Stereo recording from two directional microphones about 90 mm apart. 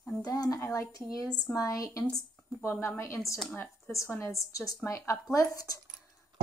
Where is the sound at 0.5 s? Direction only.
30° left (ahead or behind).